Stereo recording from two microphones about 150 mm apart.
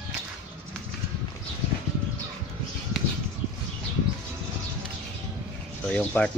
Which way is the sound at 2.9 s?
Centre (ahead or behind).